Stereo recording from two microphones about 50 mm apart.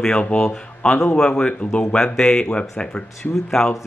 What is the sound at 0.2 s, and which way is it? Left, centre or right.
Speech, left.